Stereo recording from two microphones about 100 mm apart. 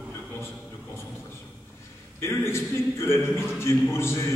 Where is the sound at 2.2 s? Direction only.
25° left (ahead or behind).